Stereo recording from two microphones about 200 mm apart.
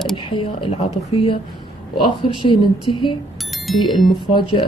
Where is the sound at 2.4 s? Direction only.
25° left (ahead or behind).